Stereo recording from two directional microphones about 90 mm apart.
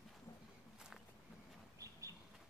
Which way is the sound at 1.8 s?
35° right (ahead or behind).